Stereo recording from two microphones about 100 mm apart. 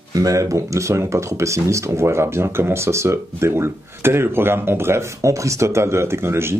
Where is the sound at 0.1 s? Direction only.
35° right (ahead or behind).